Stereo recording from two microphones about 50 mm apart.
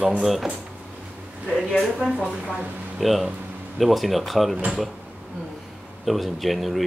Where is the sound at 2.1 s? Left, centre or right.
Centre.